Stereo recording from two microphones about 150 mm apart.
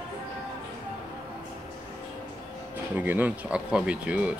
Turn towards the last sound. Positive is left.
turn(degrees=-10)  # may be behind; listen again after turning